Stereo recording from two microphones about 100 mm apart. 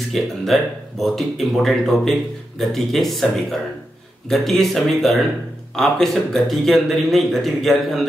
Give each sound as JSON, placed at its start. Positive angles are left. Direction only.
{"t": 0.1, "sound": "speech", "side_deg": 0}